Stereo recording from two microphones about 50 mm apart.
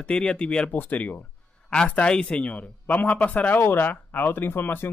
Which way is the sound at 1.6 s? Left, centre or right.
Centre.